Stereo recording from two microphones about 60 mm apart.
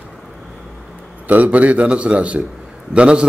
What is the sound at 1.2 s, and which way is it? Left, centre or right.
A man's voice, right.